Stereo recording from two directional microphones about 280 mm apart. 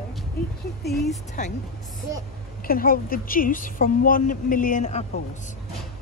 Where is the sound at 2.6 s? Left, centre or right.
Left.